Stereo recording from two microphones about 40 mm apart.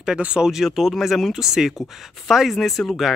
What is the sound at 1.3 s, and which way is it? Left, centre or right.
Speech, centre.